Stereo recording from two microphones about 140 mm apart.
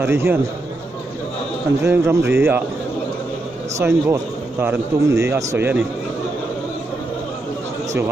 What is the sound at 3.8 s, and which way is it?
A man's voice, 20° right (ahead or behind).